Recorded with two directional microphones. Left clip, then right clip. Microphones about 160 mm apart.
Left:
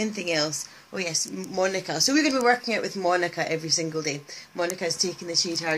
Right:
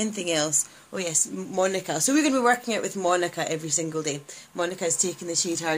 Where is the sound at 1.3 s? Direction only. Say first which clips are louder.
Right 1 dB; 15° right (ahead or behind).